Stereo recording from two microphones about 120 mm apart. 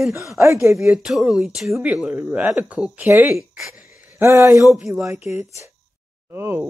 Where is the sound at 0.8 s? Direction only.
5° right (ahead or behind).